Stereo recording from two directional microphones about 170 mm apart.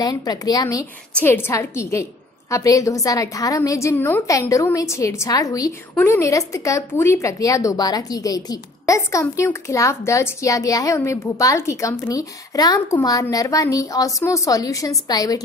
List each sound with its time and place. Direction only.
0.0 s speech: 20° left (ahead or behind)